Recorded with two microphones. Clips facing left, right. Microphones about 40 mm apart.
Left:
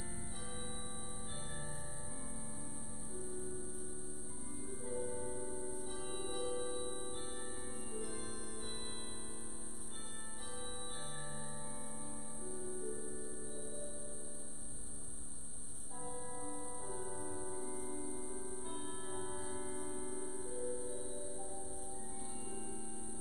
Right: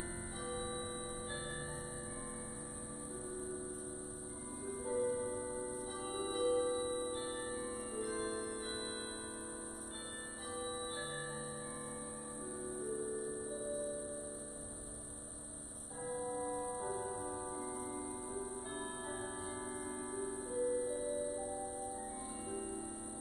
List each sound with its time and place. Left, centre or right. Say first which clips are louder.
0.5 s music: right 8 dB; right
3.3 s music: right 2 dB; right
4.8 s music: right 6 dB; right
5.9 s music: right 6 dB; right
7.7 s music: right 4 dB; right
8.1 s music: right 7 dB; right
12.6 s music: right 5 dB; right
16.1 s music: right 7 dB; right
19.1 s music: right 1 dB; right
20.0 s music: right 3 dB; right